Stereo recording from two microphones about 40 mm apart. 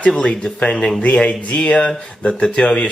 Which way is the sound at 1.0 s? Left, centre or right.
Left.